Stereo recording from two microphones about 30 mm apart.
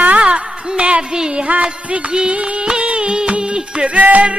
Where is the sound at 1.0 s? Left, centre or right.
Right.